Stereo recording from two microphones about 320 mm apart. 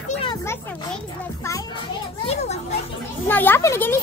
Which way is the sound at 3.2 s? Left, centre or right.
Centre.